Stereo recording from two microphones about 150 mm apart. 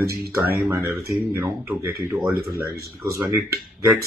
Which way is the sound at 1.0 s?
20° right (ahead or behind).